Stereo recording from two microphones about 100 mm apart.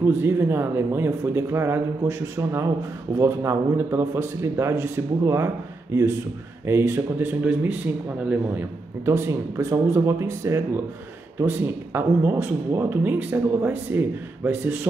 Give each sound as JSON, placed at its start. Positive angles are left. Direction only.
{"t": 0.0, "sound": "speech", "side_deg": -25}
{"t": 6.6, "sound": "speech", "side_deg": -25}